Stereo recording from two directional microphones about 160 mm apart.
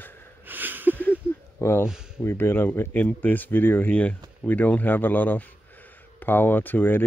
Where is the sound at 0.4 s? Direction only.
10° right (ahead or behind).